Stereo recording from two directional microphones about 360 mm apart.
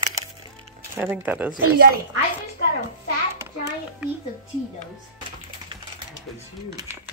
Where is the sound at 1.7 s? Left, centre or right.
Right.